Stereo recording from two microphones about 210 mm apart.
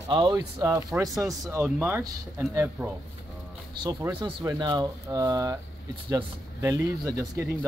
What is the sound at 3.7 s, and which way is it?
Speech, 20° right (ahead or behind).